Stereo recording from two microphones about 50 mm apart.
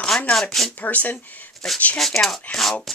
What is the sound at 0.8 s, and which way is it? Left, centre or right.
Speech, left.